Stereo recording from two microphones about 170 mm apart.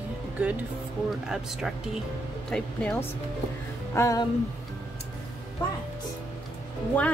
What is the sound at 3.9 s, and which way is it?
Music, 20° left (ahead or behind).